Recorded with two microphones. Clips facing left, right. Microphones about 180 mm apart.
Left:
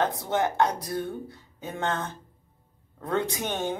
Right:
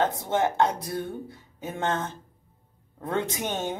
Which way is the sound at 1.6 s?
20° right (ahead or behind).